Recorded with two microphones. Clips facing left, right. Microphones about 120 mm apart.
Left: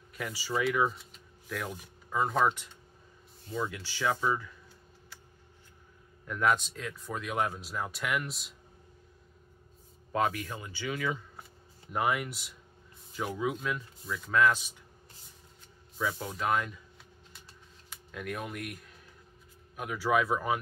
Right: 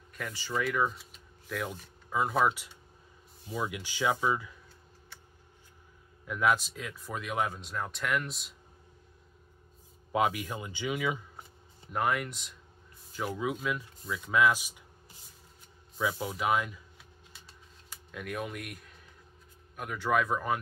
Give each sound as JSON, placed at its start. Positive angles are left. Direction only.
{"t": 0.1, "sound": "speech", "side_deg": 5}
{"t": 6.2, "sound": "speech", "side_deg": -5}
{"t": 10.1, "sound": "speech", "side_deg": -15}
{"t": 11.9, "sound": "speech", "side_deg": 0}
{"t": 16.0, "sound": "speech", "side_deg": -5}
{"t": 18.1, "sound": "speech", "side_deg": 0}